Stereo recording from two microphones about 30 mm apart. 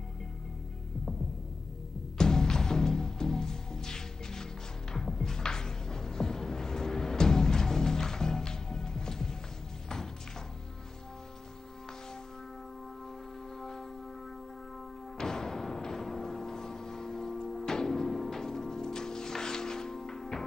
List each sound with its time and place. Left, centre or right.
2.1 s music: left
13.6 s music: centre
15.1 s music: centre